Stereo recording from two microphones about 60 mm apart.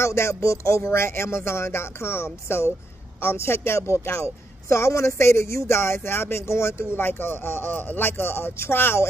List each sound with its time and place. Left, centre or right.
0.0 s speech: left